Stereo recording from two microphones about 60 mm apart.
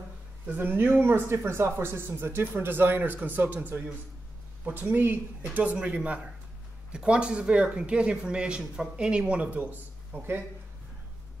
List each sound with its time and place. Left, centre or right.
0.5 s a man's voice: right